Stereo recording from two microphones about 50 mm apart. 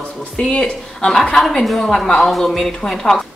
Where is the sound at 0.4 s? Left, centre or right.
Centre.